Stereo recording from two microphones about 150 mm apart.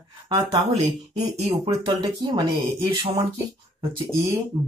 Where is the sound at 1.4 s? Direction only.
40° right (ahead or behind).